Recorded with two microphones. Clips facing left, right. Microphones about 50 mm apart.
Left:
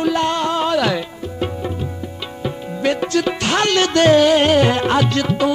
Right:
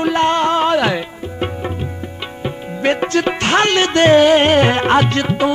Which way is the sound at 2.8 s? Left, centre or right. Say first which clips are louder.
Right 2 dB; right.